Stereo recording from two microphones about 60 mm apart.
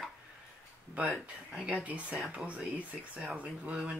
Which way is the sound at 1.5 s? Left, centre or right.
Centre.